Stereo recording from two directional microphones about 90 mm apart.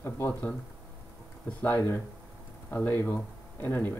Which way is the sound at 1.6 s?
25° left (ahead or behind).